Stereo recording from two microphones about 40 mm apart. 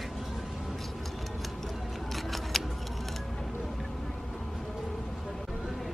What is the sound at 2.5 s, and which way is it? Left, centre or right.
Scissors, centre.